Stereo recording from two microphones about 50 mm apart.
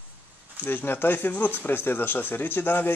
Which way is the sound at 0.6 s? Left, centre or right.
Left.